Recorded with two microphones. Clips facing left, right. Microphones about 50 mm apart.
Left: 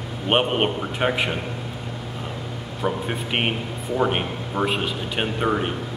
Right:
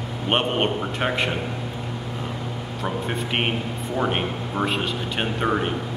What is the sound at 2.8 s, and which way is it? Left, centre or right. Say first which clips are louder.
A man's voice: left 2 dB; centre.